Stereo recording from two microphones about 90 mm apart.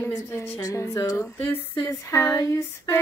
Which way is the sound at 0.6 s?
40° left (ahead or behind).